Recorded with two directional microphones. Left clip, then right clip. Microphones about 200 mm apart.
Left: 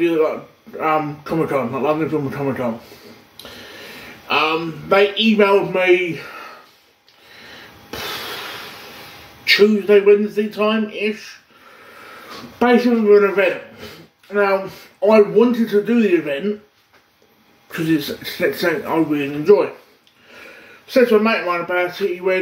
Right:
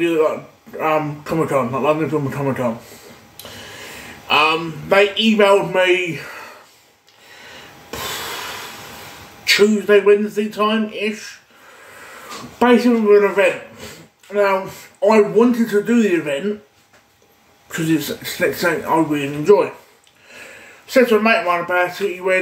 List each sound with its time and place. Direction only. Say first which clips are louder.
0.0 s a man's voice: even; 10° right (ahead or behind)
4.3 s a man's voice: right 3 dB; 10° right (ahead or behind)
9.4 s a man's voice: left 1 dB; 10° right (ahead or behind)
12.5 s speech: right 1 dB; 5° right (ahead or behind)
15.0 s a man's voice: left 1 dB; 10° right (ahead or behind)
17.6 s a man's voice: even; 10° right (ahead or behind)
20.8 s a man's voice: even; 15° right (ahead or behind)